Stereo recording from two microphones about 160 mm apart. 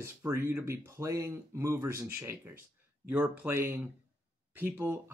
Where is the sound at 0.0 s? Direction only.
15° right (ahead or behind).